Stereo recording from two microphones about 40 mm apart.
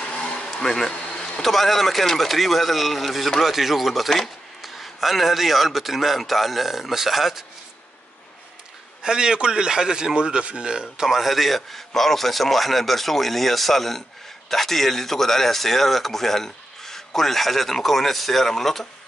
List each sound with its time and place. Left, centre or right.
0.1 s a sound: left
0.6 s speech: centre
3.4 s speech: centre
9.0 s a man's voice: centre
11.1 s speech: centre